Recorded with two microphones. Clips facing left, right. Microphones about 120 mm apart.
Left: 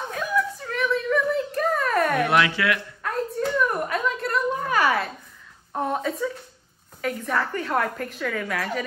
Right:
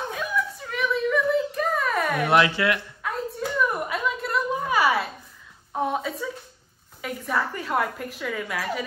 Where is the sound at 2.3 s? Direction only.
30° right (ahead or behind).